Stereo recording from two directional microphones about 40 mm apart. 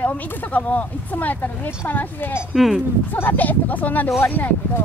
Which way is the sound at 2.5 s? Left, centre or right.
Centre.